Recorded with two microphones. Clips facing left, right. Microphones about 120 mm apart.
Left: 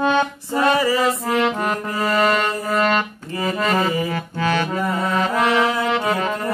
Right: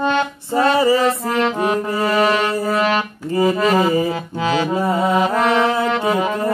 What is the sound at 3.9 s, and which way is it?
Music, 30° right (ahead or behind).